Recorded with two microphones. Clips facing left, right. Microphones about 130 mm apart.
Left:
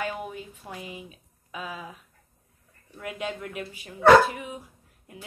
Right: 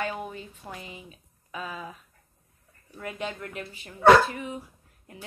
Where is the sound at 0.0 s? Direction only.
5° left (ahead or behind).